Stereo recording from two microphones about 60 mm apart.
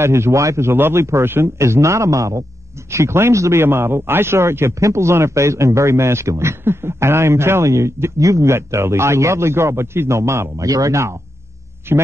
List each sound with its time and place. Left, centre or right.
0.0 s a man's voice: right
3.6 s a man's voice: right
10.6 s speech: right
11.9 s speech: right